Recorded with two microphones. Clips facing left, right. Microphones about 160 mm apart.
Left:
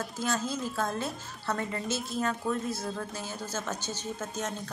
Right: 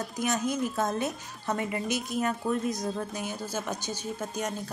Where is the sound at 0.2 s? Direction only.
15° right (ahead or behind).